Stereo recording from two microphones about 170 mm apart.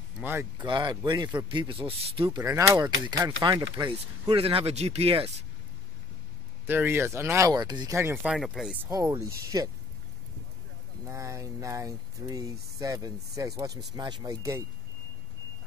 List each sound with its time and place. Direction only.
0.2 s speech: 10° right (ahead or behind)
0.6 s speech: 25° right (ahead or behind)
2.4 s speech: 15° right (ahead or behind); by 5.3 s 35° right (ahead or behind)
6.6 s speech: 10° right (ahead or behind)
8.8 s speech: 20° right (ahead or behind)
11.1 s speech: 20° right (ahead or behind)